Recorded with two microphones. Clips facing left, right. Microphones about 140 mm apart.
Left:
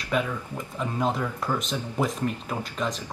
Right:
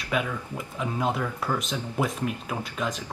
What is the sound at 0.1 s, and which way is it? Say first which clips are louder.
Speech: left 1 dB; 5° right (ahead or behind).